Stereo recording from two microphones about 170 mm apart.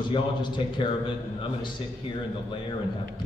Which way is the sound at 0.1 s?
30° left (ahead or behind).